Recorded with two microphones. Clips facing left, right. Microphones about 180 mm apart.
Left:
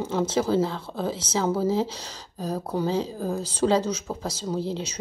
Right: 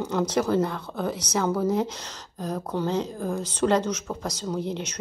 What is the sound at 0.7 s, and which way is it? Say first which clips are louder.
Speech: even; 30° left (ahead or behind).